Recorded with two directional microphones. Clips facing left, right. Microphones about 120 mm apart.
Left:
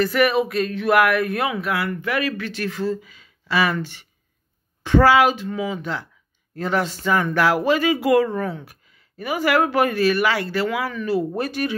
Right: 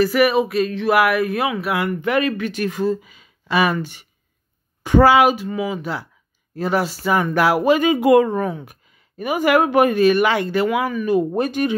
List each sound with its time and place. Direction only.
0.0 s speech: 5° right (ahead or behind)
1.7 s speech: 20° right (ahead or behind)